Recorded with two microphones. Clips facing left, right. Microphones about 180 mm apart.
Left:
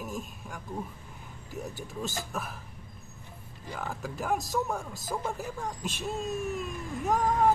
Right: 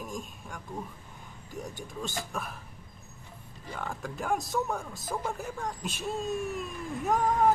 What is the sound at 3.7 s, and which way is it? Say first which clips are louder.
Speech: left 1 dB; 5° left (ahead or behind).